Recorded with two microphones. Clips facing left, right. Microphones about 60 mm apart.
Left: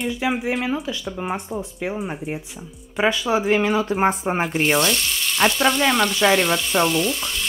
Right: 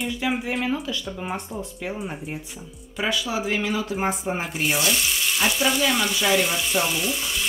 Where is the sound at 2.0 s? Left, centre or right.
Centre.